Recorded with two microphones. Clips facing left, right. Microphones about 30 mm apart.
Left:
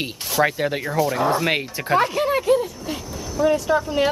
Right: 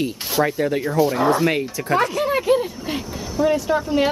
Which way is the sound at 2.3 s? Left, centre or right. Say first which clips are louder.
Even; centre.